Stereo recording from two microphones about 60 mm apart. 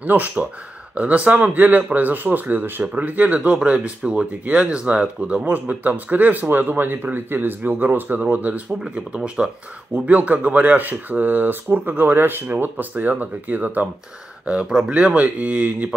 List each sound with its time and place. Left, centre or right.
0.0 s speech: right
8.8 s speech: centre
14.4 s speech: centre